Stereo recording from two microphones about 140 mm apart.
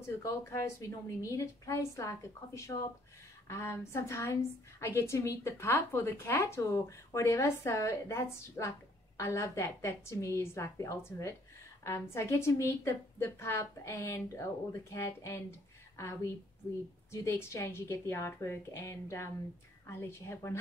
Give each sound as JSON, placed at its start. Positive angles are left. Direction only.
{"t": 0.0, "sound": "a woman's voice", "side_deg": 20}
{"t": 17.1, "sound": "a woman's voice", "side_deg": 20}